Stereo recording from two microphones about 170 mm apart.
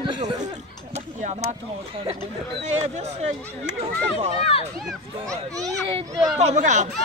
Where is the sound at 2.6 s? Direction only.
40° right (ahead or behind).